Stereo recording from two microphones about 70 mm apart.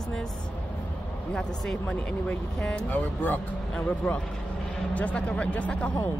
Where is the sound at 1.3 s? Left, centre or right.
Centre.